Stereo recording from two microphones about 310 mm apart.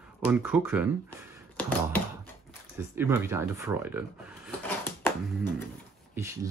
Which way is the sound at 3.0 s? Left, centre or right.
Centre.